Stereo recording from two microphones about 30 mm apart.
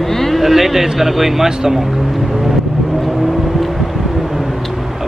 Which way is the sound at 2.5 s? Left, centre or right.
Centre.